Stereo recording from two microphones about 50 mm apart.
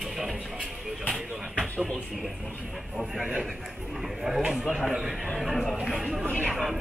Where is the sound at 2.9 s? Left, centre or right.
Centre.